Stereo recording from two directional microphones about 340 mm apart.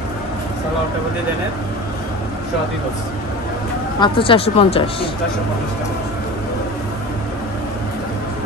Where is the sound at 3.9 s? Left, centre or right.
Centre.